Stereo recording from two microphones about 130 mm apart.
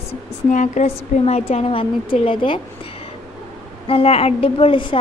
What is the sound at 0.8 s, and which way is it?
A woman's voice, 55° left (ahead or behind).